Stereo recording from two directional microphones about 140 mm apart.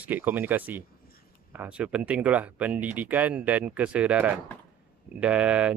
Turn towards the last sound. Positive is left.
turn(degrees=-10)  # may be behind; listen again after turning